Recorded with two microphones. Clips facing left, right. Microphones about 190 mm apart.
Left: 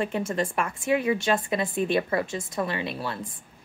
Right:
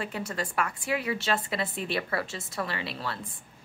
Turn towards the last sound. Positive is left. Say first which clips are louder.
# left 4 dB
turn(degrees=20)  # may be behind; listen again after turning